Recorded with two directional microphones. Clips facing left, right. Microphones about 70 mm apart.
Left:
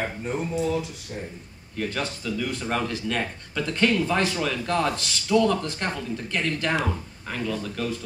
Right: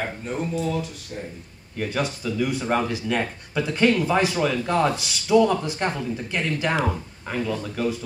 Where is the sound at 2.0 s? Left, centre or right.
Centre.